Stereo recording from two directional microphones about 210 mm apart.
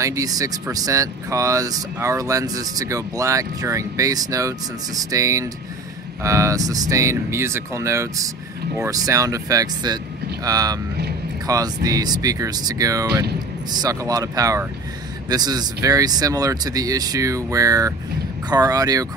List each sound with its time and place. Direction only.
0.0 s speech: 15° right (ahead or behind)